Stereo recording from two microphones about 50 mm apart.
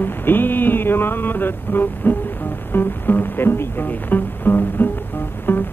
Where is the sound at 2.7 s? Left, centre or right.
Left.